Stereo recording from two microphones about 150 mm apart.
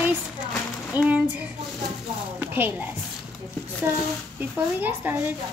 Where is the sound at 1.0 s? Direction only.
25° left (ahead or behind).